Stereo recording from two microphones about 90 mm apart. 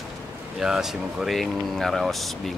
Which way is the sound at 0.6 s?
5° right (ahead or behind).